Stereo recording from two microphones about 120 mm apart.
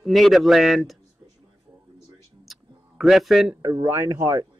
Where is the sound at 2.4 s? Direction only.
Centre (ahead or behind).